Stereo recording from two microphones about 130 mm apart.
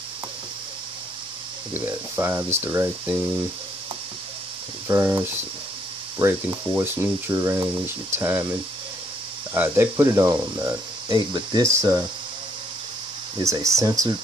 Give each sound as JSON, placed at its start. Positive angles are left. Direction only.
{"t": 1.7, "sound": "speech", "side_deg": -15}
{"t": 4.8, "sound": "speech", "side_deg": -20}
{"t": 13.4, "sound": "speech", "side_deg": -25}